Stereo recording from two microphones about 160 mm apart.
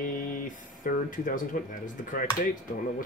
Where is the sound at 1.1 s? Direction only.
55° left (ahead or behind).